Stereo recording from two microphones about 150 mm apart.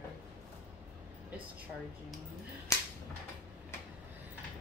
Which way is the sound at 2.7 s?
20° left (ahead or behind).